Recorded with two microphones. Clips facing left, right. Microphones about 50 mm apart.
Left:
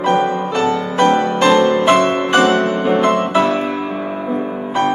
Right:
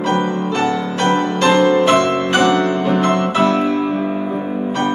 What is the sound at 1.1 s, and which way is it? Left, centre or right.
Music, centre.